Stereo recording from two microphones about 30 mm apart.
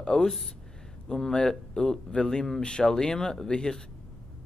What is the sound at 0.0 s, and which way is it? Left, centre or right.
Speech, centre.